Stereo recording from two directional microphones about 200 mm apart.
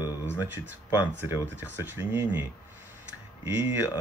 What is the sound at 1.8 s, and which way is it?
Speech, 10° right (ahead or behind).